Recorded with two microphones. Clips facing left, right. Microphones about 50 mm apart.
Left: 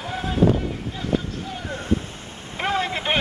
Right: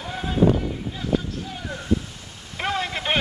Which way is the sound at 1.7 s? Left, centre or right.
Left.